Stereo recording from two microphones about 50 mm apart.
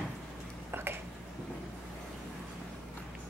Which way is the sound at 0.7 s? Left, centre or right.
Right.